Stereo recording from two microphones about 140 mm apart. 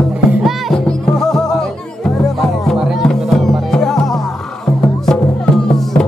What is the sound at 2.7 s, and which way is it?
Music, centre (ahead or behind).